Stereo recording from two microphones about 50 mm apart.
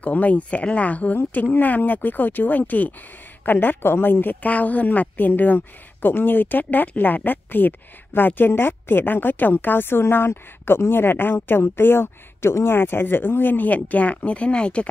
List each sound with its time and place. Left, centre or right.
0.0 s speech: left